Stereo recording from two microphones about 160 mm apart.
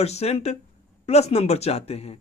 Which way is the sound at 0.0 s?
40° left (ahead or behind).